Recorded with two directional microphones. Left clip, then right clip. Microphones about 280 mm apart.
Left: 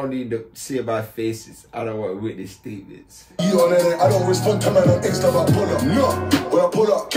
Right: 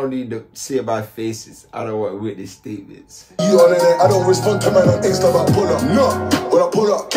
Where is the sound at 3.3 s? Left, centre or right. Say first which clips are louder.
Right 5 dB; right.